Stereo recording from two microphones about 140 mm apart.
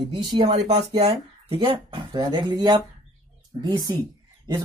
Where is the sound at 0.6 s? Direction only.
45° right (ahead or behind).